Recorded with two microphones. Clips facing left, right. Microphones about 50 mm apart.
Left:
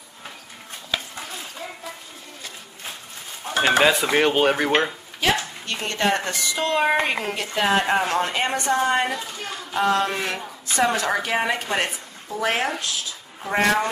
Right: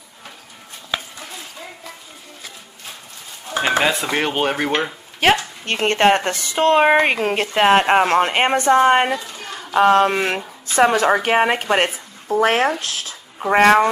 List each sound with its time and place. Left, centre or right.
3.6 s stir: centre
3.9 s speech: centre
5.2 s a woman's voice: right